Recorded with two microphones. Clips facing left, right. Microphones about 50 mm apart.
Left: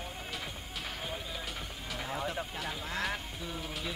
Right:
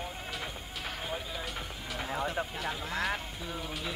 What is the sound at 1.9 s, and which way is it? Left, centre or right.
Speech, centre.